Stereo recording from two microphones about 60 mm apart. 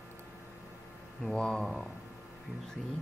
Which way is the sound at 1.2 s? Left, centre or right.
Centre.